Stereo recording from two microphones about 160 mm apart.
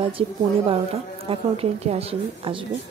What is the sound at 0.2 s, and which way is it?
A child's voice, 35° right (ahead or behind).